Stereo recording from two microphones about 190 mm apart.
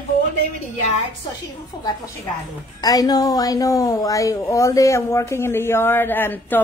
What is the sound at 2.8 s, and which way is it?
A woman's voice, 20° left (ahead or behind).